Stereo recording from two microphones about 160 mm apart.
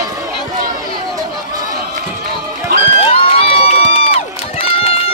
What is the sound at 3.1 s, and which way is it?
Run, 35° left (ahead or behind).